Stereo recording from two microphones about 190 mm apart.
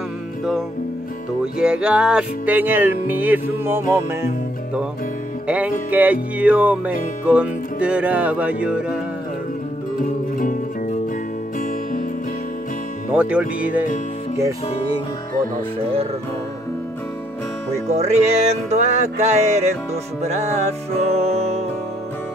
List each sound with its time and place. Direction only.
1.4 s music: 5° right (ahead or behind)
5.5 s music: 10° right (ahead or behind)
10.3 s music: 45° left (ahead or behind)
13.1 s music: 5° right (ahead or behind)
17.8 s music: 35° right (ahead or behind)